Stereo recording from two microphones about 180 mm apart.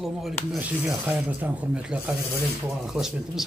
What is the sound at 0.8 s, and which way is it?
Speech, 10° right (ahead or behind).